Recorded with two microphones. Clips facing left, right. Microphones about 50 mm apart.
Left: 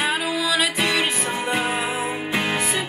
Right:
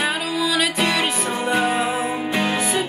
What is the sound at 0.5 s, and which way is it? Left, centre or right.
Music, centre.